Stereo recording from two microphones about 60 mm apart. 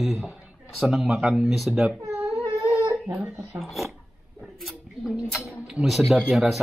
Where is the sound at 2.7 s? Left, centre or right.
Right.